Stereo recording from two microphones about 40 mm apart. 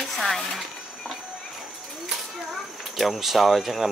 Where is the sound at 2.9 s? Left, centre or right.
Centre.